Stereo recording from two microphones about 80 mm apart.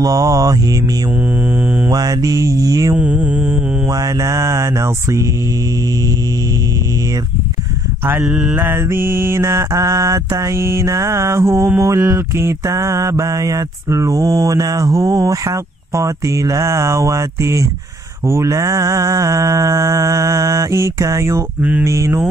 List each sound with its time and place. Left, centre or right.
0.0 s speech: right
1.9 s speech: right
3.3 s mantra: centre
4.0 s mantra: right
8.0 s mantra: right
13.2 s mantra: right
13.8 s speech: right
18.2 s mantra: right
21.5 s mantra: centre
21.8 s mantra: right